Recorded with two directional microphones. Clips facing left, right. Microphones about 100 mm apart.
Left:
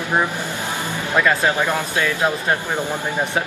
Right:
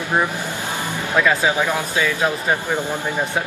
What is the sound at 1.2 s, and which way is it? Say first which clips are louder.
Speech: even; 10° right (ahead or behind).